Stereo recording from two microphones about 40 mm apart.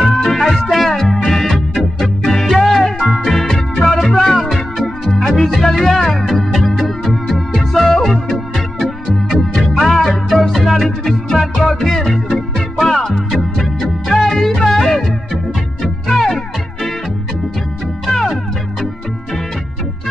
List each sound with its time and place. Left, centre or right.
0.2 s music: centre
13.6 s music: centre
18.0 s music: centre